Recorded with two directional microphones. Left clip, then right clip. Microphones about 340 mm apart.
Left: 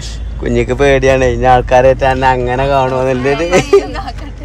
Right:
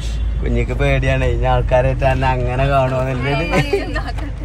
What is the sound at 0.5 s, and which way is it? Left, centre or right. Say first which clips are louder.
Speech: left 9 dB; left.